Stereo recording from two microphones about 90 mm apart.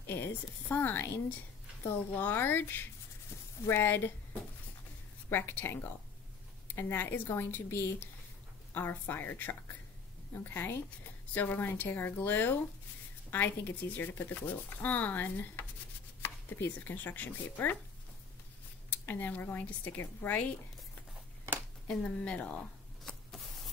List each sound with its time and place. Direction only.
0.0 s a woman's voice: 25° left (ahead or behind)
5.3 s speech: 25° left (ahead or behind)
18.9 s speech: 20° left (ahead or behind)
21.8 s speech: 15° left (ahead or behind)